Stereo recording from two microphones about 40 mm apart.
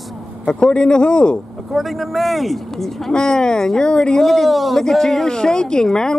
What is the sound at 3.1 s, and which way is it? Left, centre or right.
Speech, centre.